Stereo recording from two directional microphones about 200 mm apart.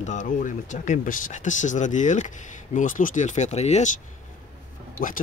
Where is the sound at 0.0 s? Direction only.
40° left (ahead or behind).